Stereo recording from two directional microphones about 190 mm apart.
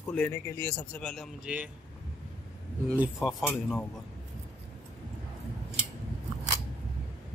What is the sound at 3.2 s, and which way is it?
Speech, centre (ahead or behind).